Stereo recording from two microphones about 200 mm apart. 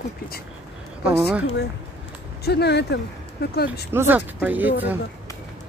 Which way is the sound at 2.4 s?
55° left (ahead or behind).